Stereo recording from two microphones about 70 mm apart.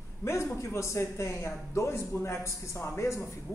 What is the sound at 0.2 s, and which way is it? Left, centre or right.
A man's voice, left.